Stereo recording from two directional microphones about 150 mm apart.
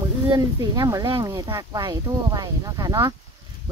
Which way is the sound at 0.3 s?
25° right (ahead or behind).